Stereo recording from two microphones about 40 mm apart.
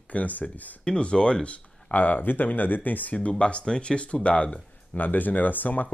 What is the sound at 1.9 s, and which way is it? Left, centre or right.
Speech, left.